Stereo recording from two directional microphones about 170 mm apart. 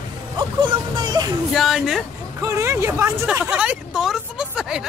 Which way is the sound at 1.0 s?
20° right (ahead or behind).